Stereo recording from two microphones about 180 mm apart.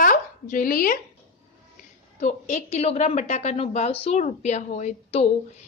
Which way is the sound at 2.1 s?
40° left (ahead or behind).